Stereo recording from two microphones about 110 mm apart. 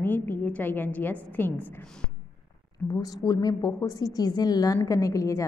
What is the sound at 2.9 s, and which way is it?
A woman's voice, 35° left (ahead or behind).